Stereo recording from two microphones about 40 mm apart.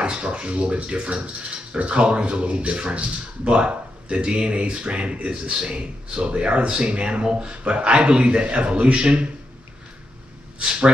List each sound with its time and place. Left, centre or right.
0.0 s speech: right